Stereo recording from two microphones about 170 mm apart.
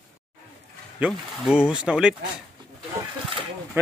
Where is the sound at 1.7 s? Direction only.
5° right (ahead or behind).